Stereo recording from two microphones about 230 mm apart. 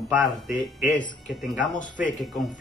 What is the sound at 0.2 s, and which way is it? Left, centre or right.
Speech, centre.